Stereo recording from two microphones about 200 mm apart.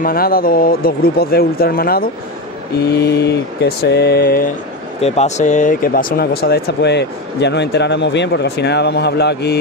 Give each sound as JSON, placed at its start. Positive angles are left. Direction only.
{"t": 0.0, "sound": "speech", "side_deg": 45}
{"t": 3.2, "sound": "speech", "side_deg": 55}
{"t": 5.0, "sound": "speech", "side_deg": 35}